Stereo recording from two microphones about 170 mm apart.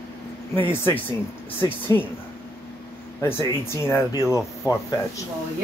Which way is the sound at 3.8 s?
15° left (ahead or behind).